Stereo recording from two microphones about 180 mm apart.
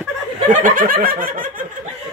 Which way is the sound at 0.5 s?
50° right (ahead or behind).